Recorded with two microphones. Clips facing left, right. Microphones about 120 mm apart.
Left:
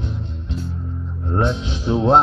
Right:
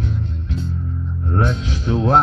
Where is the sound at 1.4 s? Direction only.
10° left (ahead or behind).